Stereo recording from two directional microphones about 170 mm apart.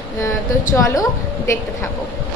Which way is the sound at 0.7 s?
15° left (ahead or behind).